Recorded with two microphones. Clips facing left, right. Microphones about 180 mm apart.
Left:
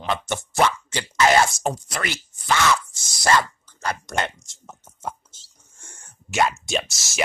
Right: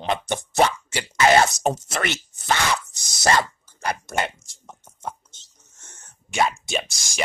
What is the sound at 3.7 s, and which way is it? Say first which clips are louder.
Speech: right 1 dB; 10° right (ahead or behind).